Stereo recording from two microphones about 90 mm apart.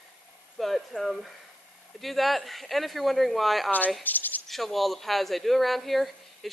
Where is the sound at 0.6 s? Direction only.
Centre (ahead or behind).